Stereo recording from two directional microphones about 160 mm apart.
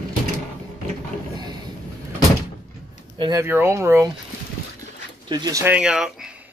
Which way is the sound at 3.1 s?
25° right (ahead or behind).